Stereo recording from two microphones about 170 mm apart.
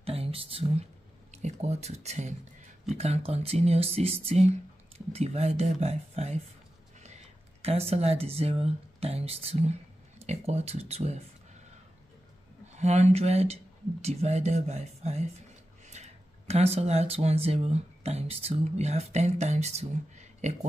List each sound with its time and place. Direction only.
0.0 s speech: 35° right (ahead or behind)
12.7 s speech: 40° right (ahead or behind)